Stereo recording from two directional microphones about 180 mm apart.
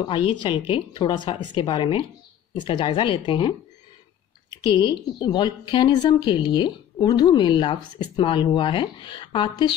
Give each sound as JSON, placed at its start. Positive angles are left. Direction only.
{"t": 0.0, "sound": "a woman's voice", "side_deg": 30}
{"t": 4.6, "sound": "a woman's voice", "side_deg": 25}